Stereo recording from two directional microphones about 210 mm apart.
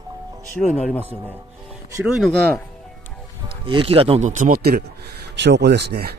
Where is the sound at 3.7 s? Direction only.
25° right (ahead or behind).